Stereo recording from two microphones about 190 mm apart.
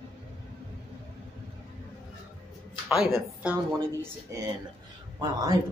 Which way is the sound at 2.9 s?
Centre (ahead or behind).